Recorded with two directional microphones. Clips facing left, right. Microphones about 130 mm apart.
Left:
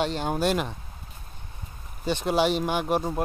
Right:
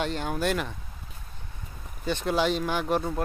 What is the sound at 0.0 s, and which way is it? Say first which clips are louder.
Speech: left 3 dB; 25° left (ahead or behind).